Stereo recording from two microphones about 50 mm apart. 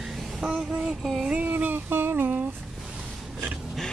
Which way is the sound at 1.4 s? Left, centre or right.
Right.